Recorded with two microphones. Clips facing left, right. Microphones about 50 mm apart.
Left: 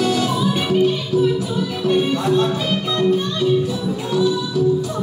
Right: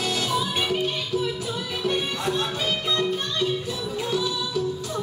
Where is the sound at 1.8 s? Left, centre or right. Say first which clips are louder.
Left 8 dB; centre.